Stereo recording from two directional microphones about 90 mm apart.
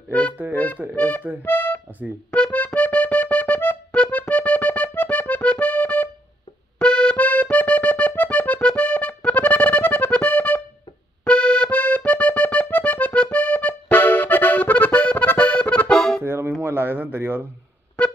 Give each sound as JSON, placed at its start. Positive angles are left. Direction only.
{"t": 0.4, "sound": "music", "side_deg": -25}
{"t": 0.9, "sound": "speech", "side_deg": 15}
{"t": 1.4, "sound": "music", "side_deg": 20}
{"t": 11.2, "sound": "accordion", "side_deg": 10}
{"t": 16.3, "sound": "music", "side_deg": -25}
{"t": 16.6, "sound": "a sound", "side_deg": -25}